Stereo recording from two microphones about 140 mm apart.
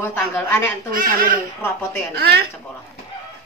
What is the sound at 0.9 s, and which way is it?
Speech, 90° right.